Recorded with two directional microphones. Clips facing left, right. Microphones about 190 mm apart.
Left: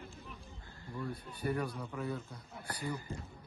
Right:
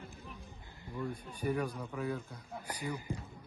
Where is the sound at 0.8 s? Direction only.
15° right (ahead or behind).